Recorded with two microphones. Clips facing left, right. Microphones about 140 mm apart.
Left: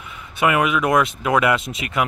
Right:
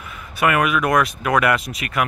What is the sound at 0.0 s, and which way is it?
Speech, 20° left (ahead or behind).